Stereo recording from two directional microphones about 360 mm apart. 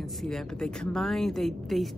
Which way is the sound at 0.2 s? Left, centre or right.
Centre.